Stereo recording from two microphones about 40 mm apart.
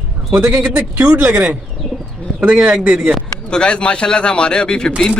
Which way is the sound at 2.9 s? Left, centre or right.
Centre.